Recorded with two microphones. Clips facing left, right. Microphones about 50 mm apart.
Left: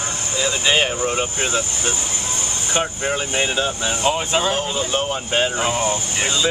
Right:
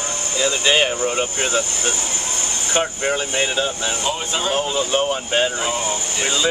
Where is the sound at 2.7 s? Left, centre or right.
Centre.